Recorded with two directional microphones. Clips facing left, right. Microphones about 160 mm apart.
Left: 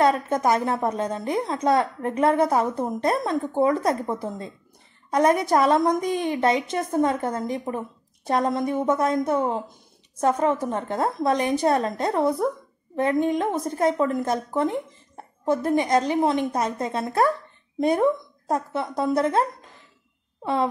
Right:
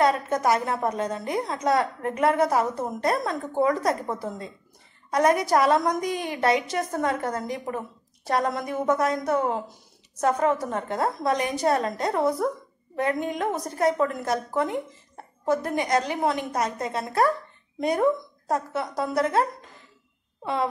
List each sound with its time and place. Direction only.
0.3 s a woman's voice: 25° left (ahead or behind)
5.1 s a woman's voice: 25° left (ahead or behind)